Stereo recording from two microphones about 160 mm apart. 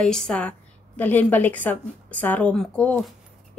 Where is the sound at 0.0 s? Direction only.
5° left (ahead or behind).